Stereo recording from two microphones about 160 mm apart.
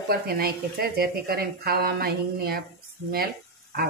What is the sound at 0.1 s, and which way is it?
Speech, 70° right (ahead or behind).